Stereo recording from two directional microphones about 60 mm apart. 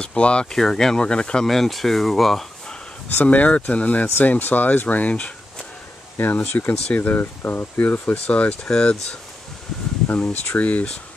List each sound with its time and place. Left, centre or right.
0.0 s speech: centre
3.1 s speech: left
6.3 s speech: left
8.3 s speech: left
10.0 s speech: left